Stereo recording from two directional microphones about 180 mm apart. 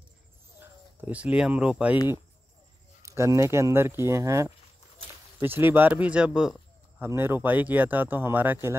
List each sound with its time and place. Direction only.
0.6 s speech: 10° right (ahead or behind)
3.0 s speech: 15° right (ahead or behind)